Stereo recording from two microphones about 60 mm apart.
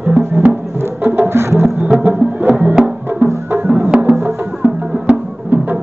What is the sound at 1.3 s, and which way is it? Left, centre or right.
Music, right.